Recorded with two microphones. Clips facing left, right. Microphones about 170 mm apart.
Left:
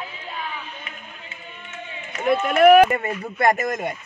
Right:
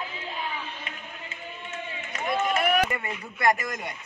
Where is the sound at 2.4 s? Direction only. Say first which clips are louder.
Left 13 dB; 65° left (ahead or behind).